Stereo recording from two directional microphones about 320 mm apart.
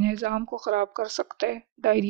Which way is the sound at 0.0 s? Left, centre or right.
Right.